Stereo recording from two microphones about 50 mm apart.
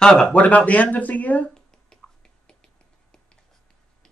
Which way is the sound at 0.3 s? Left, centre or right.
Left.